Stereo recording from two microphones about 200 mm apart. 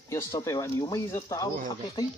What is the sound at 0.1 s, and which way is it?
Speech, 15° left (ahead or behind).